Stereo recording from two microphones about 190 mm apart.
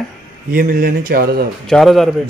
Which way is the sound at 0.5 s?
50° right (ahead or behind).